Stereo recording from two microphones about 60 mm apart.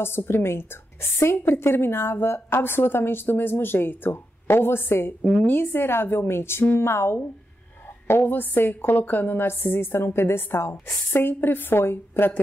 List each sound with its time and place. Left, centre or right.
0.0 s a woman's voice: left
5.2 s speech: centre
5.5 s a woman's voice: left
8.2 s a woman's voice: left